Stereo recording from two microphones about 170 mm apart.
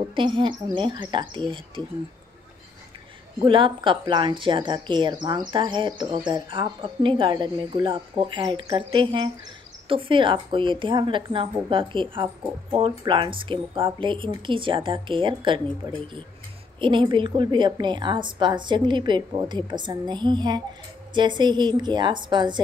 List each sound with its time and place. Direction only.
0.1 s speech: 30° right (ahead or behind)
3.4 s speech: 30° right (ahead or behind)